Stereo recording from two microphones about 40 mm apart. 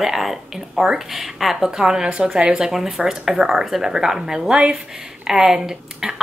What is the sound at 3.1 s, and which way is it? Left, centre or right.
Speech, centre.